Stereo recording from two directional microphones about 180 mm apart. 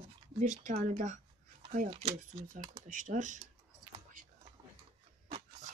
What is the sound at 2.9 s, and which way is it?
Speech, 45° right (ahead or behind).